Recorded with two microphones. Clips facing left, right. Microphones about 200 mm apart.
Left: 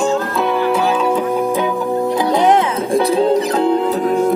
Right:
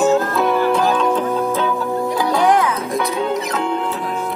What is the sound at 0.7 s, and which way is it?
Music, 5° left (ahead or behind).